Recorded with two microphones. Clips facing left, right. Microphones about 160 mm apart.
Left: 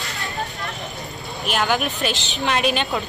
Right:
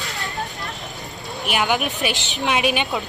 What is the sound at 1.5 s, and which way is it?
Speech, 10° right (ahead or behind).